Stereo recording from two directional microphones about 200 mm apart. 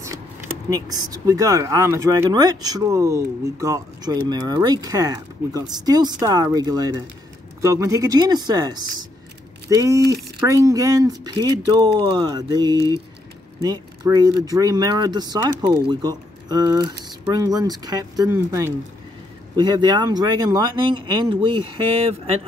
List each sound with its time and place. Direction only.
0.7 s speech: 20° right (ahead or behind)